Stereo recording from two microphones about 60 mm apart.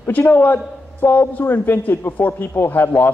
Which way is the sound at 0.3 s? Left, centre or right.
Left.